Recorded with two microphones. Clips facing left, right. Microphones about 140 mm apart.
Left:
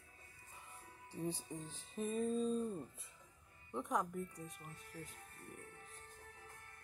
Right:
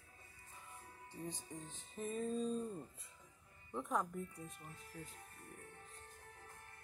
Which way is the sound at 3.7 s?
Centre (ahead or behind).